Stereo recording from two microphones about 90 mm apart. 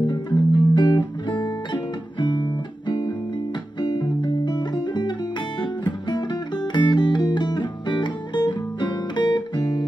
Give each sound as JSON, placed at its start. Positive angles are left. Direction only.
{"t": 0.0, "sound": "music", "side_deg": 55}